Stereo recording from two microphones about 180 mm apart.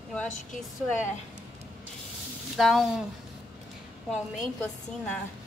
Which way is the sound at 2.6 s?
Centre (ahead or behind).